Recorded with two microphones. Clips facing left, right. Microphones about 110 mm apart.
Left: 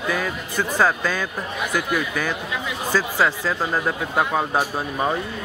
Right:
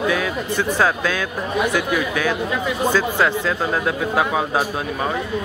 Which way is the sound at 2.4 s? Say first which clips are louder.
Right 7 dB; 50° right (ahead or behind).